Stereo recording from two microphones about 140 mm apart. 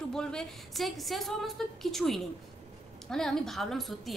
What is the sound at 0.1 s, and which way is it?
A woman's voice, 5° left (ahead or behind).